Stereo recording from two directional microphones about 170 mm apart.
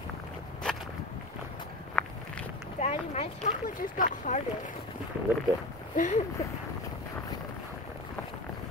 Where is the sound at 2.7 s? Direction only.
40° left (ahead or behind).